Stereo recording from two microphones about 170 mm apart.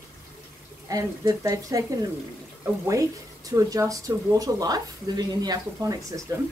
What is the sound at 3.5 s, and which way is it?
Speech, 20° right (ahead or behind).